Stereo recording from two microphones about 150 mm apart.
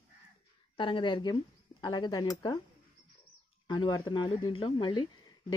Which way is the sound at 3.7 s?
30° left (ahead or behind).